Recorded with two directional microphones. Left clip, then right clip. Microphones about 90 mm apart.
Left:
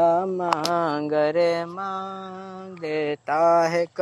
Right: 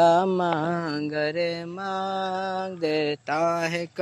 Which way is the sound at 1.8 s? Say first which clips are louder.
Right 3 dB; 20° right (ahead or behind).